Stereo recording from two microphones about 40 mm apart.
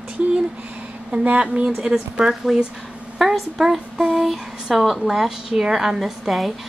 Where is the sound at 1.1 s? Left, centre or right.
Right.